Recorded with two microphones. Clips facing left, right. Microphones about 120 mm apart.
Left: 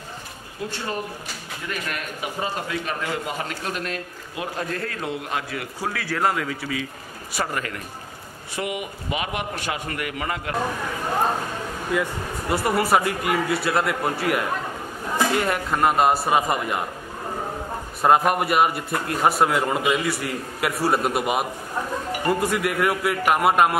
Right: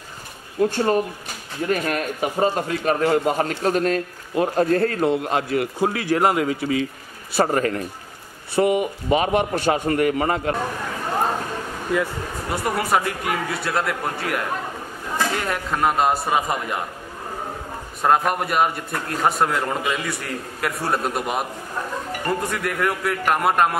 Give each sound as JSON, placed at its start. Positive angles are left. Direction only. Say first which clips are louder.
{"t": 0.6, "sound": "a man's voice", "louder": "right 10 dB", "side_deg": -45}
{"t": 5.8, "sound": "a man's voice", "louder": "right 4 dB", "side_deg": -20}
{"t": 11.9, "sound": "a man's voice", "louder": "right 2 dB", "side_deg": 0}
{"t": 18.0, "sound": "a man's voice", "louder": "left 1 dB", "side_deg": 5}